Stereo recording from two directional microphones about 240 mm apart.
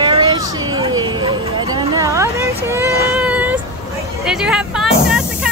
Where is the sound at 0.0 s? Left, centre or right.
Centre.